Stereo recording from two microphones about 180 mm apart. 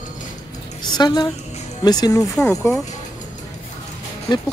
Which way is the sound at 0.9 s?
25° left (ahead or behind).